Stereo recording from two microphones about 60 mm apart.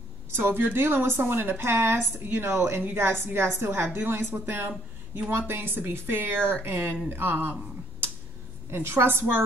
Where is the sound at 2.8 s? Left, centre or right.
Right.